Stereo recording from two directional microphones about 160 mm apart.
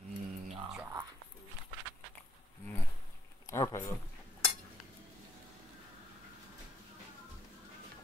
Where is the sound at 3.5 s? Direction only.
15° left (ahead or behind).